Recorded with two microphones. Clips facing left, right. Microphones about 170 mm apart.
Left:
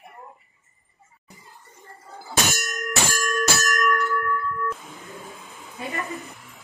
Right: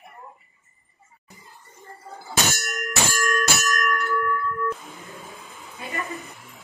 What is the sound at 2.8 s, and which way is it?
Bell, 15° left (ahead or behind).